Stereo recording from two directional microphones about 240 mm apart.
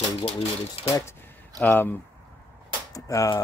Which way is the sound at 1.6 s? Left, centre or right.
Centre.